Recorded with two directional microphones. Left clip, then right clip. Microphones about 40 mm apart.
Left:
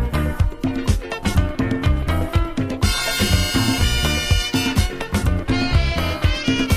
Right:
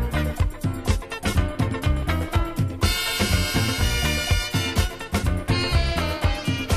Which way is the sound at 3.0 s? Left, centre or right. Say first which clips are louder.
Left 3 dB; centre.